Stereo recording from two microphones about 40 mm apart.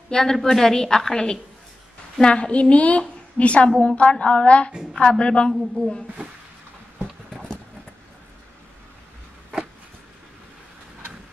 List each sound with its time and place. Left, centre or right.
0.1 s a woman's voice: centre